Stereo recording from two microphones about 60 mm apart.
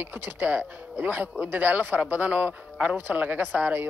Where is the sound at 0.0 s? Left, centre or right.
Right.